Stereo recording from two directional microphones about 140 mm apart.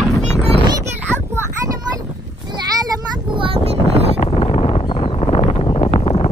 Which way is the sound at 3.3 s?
40° right (ahead or behind).